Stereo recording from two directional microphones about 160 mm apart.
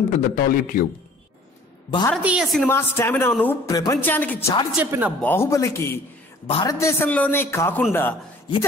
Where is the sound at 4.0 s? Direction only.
10° left (ahead or behind).